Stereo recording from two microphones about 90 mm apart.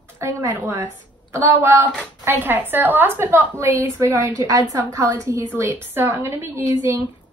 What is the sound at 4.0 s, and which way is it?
A woman's voice, 40° right (ahead or behind).